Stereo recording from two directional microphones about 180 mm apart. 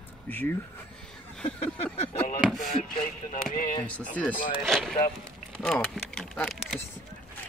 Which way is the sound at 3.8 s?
10° left (ahead or behind).